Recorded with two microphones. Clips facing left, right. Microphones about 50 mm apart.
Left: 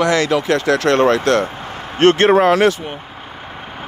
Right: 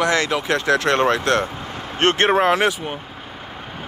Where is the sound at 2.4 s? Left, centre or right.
Centre.